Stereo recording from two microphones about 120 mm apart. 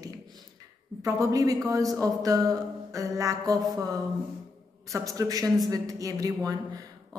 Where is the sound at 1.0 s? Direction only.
30° right (ahead or behind).